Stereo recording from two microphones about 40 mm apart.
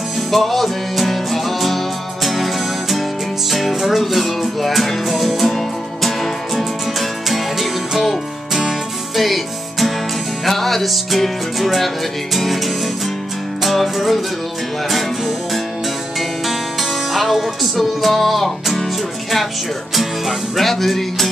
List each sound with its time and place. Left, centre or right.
0.3 s music: centre
17.1 s music: centre
20.0 s music: centre